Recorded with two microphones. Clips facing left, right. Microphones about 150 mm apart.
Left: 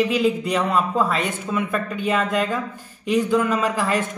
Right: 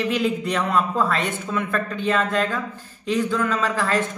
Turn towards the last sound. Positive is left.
turn(degrees=15)  # may be behind; listen again after turning